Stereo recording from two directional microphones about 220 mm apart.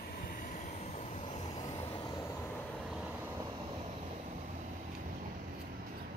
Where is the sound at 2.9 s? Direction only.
5° right (ahead or behind).